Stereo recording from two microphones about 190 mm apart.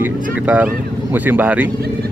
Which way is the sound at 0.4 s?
5° right (ahead or behind).